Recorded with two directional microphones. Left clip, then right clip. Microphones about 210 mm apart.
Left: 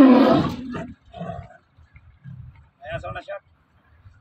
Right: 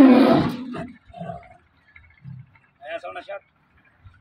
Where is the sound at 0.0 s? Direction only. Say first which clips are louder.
Even; centre (ahead or behind).